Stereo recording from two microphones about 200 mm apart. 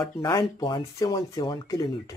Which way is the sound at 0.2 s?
20° left (ahead or behind).